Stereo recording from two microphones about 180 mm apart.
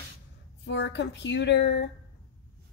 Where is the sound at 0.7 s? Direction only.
75° left (ahead or behind).